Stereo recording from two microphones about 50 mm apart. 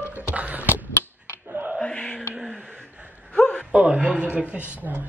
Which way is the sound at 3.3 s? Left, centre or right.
Centre.